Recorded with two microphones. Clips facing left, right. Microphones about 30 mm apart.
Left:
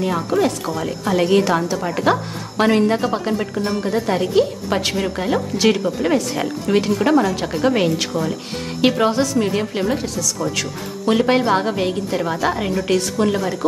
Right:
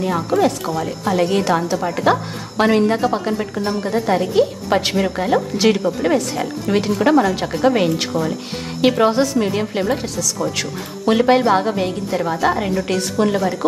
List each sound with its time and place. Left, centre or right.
0.0 s a woman's voice: centre
9.1 s a woman's voice: centre
9.4 s a woman's voice: centre
11.3 s a woman's voice: centre